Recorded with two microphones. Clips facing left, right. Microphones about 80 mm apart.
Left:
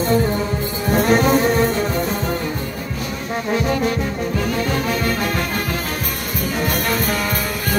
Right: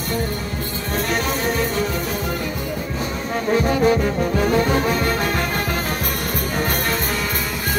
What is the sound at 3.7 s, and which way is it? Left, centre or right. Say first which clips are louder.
Music: right 3 dB; centre.